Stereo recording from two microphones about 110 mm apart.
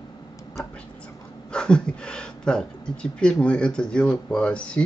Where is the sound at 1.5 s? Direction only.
10° left (ahead or behind).